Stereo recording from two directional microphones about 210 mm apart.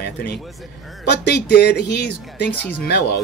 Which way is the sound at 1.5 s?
50° left (ahead or behind).